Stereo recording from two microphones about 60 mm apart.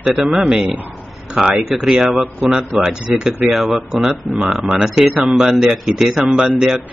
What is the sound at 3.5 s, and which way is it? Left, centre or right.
Speech, centre.